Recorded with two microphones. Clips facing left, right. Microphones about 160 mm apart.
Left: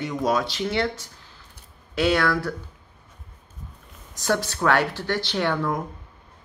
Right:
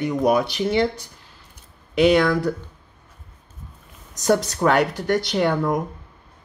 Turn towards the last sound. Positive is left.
turn(degrees=-15)  # may be behind; listen again after turning